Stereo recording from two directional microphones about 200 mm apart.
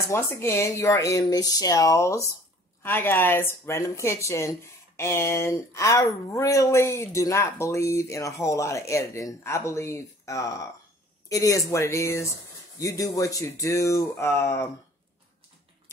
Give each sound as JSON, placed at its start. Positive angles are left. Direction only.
{"t": 0.1, "sound": "speech", "side_deg": 15}